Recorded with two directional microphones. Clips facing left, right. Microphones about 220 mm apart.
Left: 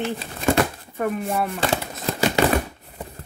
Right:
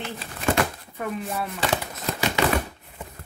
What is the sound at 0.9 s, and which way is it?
Speech, 50° left (ahead or behind).